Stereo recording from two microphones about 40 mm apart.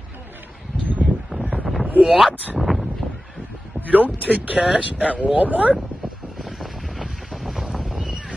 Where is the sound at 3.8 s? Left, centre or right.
Right.